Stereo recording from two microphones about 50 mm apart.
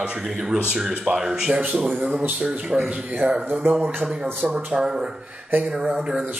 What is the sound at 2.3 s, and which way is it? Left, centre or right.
Speech, centre.